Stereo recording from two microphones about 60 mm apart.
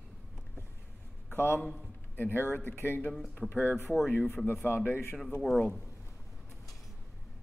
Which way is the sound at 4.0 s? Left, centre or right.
Left.